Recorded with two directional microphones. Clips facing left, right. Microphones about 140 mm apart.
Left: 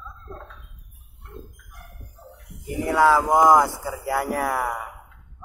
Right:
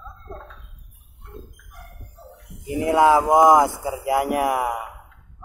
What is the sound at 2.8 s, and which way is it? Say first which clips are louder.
Speech: right 2 dB; 20° right (ahead or behind).